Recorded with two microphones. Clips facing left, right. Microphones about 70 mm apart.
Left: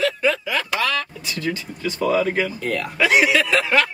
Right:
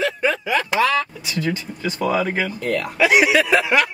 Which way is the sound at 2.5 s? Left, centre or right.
Centre.